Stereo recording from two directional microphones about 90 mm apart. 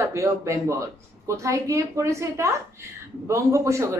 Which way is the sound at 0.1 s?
35° right (ahead or behind).